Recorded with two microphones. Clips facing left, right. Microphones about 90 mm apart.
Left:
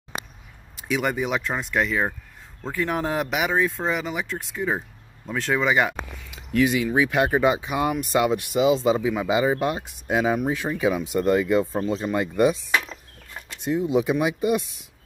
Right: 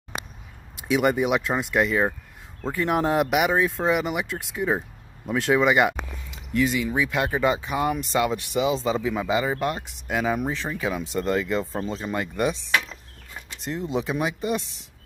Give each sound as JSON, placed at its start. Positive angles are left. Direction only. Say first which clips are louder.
{"t": 0.9, "sound": "speech", "louder": "right 3 dB", "side_deg": -5}
{"t": 6.9, "sound": "speech", "louder": "left 4 dB", "side_deg": 20}
{"t": 12.8, "sound": "chop", "louder": "left 2 dB", "side_deg": 0}
{"t": 14.2, "sound": "speech", "louder": "left 4 dB", "side_deg": 10}